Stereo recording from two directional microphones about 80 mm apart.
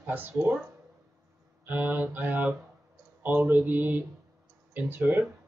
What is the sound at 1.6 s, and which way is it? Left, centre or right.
Speech, right.